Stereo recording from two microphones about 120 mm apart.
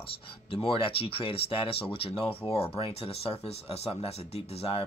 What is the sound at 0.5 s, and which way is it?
Speech, 50° left (ahead or behind).